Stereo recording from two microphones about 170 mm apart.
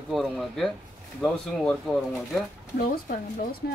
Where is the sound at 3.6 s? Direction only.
90° left.